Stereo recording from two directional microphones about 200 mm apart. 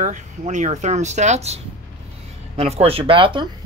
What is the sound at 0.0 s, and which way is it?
Speech, 40° right (ahead or behind).